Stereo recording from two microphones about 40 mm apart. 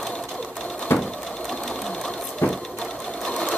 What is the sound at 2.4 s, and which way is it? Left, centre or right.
Sewing machine, left.